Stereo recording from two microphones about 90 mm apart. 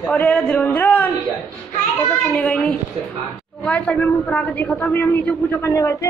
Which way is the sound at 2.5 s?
10° left (ahead or behind).